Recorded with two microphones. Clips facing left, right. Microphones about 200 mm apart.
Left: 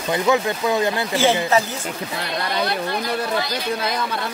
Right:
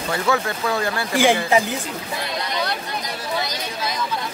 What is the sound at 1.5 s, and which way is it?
Speech, 15° right (ahead or behind).